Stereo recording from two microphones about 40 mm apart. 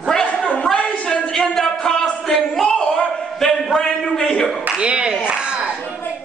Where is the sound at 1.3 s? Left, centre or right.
Centre.